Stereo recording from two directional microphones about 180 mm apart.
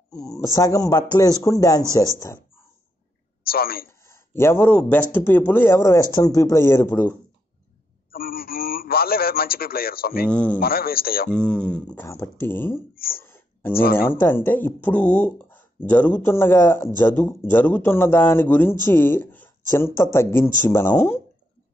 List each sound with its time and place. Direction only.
0.1 s speech: 20° left (ahead or behind)
3.4 s a man's voice: 55° left (ahead or behind)
4.0 s speech: 15° left (ahead or behind)
8.1 s a man's voice: 55° left (ahead or behind)
10.2 s speech: 5° left (ahead or behind)
10.6 s a man's voice: 55° left (ahead or behind)
11.2 s speech: 5° left (ahead or behind)
12.9 s speech: 55° left (ahead or behind)
13.2 s a sound: 10° left (ahead or behind)
13.9 s speech: 10° left (ahead or behind)